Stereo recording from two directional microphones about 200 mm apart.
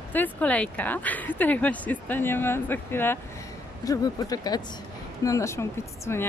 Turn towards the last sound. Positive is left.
turn(degrees=15)  # may be behind; listen again after turning